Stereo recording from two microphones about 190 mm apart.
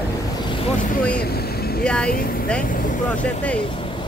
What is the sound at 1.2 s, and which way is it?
Vehicle, 55° left (ahead or behind).